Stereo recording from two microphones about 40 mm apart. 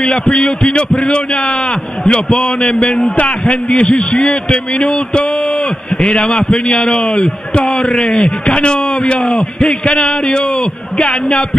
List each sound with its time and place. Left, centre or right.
0.3 s a man's voice: left